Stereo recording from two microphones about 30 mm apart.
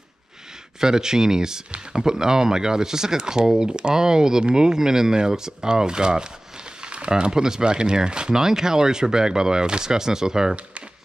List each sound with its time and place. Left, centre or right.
0.7 s speech: right
6.8 s a sound: right
7.1 s speech: right